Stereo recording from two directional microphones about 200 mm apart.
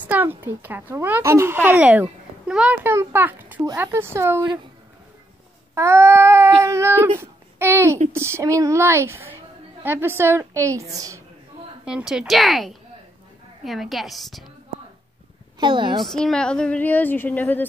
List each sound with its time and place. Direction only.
0.0 s a child's voice: 10° right (ahead or behind)
5.8 s a child's voice: 15° right (ahead or behind)
11.8 s a woman's voice: 5° right (ahead or behind)
15.6 s a child's voice: 25° right (ahead or behind)
16.0 s a woman's voice: centre (ahead or behind)